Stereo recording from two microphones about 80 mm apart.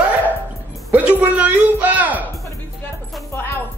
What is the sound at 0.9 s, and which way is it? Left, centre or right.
A man's voice, centre.